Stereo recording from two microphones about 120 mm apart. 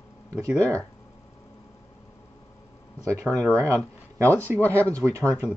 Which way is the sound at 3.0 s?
25° right (ahead or behind).